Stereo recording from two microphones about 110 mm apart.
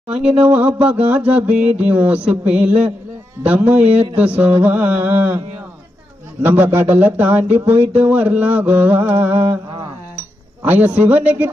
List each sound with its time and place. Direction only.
0.1 s speech: 10° right (ahead or behind)
6.4 s speech: 20° right (ahead or behind)
10.6 s speech: 15° right (ahead or behind)